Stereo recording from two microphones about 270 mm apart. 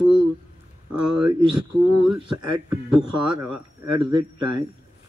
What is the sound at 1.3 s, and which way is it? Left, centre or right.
Speech, centre.